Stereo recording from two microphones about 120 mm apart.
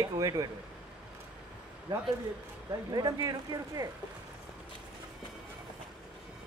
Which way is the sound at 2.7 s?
35° right (ahead or behind).